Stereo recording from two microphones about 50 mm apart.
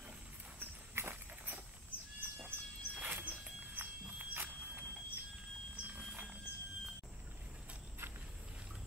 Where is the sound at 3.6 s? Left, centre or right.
Right.